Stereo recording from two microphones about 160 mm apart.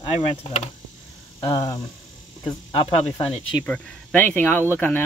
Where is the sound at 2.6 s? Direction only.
35° left (ahead or behind).